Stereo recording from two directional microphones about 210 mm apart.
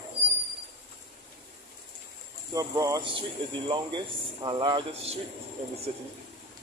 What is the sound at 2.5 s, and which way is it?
Speech, 15° right (ahead or behind).